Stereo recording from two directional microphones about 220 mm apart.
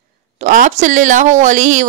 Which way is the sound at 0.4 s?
35° right (ahead or behind).